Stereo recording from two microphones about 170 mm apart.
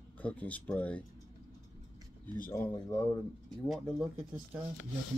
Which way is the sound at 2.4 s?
10° left (ahead or behind).